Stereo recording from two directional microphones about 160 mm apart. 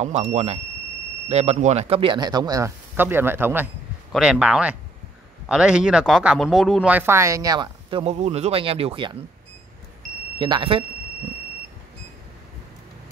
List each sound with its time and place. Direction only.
0.0 s speech: 45° right (ahead or behind)
10.4 s speech: 30° right (ahead or behind)